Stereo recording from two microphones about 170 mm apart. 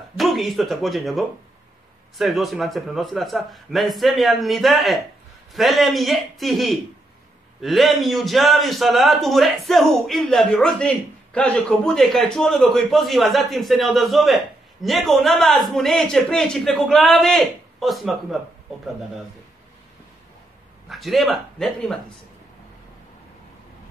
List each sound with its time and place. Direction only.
0.2 s a man's voice: centre (ahead or behind)
20.9 s a man's voice: centre (ahead or behind)